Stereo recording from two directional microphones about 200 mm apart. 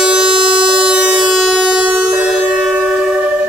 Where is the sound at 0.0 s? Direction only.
5° right (ahead or behind).